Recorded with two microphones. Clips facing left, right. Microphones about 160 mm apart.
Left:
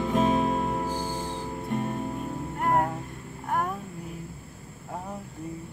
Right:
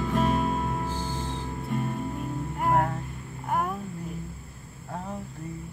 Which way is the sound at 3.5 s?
Centre (ahead or behind).